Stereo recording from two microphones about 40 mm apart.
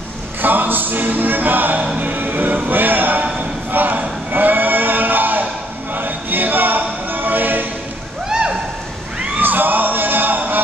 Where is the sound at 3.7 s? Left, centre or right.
Right.